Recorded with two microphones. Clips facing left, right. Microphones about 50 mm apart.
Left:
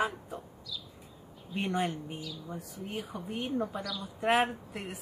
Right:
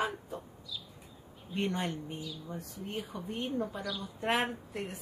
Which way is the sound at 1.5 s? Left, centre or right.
Centre.